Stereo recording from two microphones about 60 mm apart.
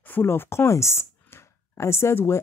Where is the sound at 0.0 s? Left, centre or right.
Left.